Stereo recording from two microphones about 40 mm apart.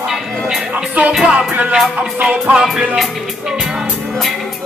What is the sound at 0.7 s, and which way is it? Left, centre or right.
Music, right.